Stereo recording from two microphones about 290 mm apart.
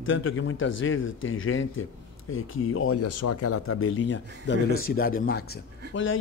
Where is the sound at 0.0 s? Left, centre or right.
Left.